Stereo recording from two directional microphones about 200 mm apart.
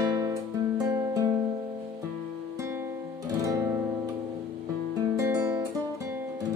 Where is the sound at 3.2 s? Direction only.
15° right (ahead or behind).